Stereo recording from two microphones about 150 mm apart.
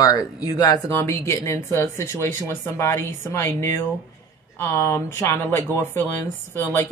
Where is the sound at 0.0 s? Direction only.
25° left (ahead or behind).